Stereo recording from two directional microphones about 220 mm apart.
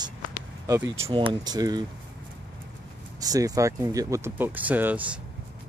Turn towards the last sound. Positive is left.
turn(degrees=-5)  # may be behind; listen again after turning